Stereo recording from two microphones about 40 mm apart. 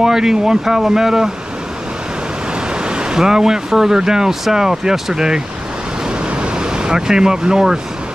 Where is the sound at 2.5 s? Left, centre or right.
Right.